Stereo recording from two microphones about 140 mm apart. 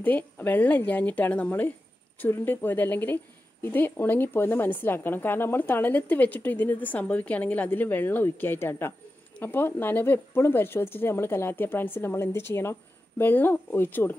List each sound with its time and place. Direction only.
0.0 s speech: 15° left (ahead or behind)